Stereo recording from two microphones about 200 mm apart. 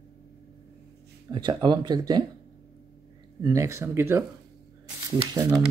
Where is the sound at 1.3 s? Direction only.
25° right (ahead or behind).